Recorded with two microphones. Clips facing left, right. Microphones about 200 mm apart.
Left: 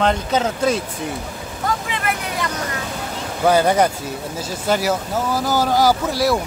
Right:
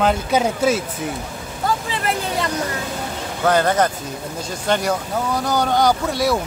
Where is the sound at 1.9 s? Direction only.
30° right (ahead or behind).